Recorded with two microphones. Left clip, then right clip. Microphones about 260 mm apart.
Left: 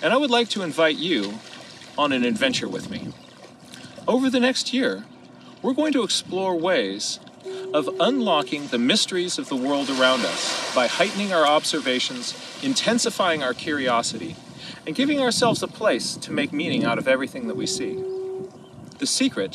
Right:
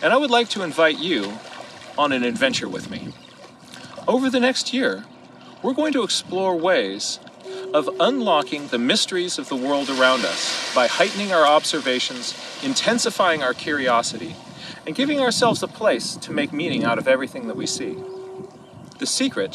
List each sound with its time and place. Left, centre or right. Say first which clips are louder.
0.0 s speech: right 2 dB; centre
4.0 s speech: right 2 dB; centre
10.1 s speech: right 2 dB; centre
10.8 s speech: right 3 dB; centre
18.9 s speech: right 1 dB; centre